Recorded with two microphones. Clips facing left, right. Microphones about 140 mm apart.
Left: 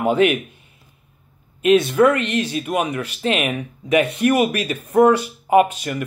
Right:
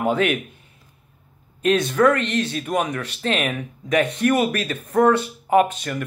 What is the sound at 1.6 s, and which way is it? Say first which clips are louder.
Speech: left 3 dB; 5° left (ahead or behind).